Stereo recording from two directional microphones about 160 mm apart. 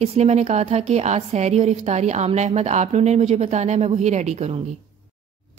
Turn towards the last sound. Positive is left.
turn(degrees=-40)  # may be behind; listen again after turning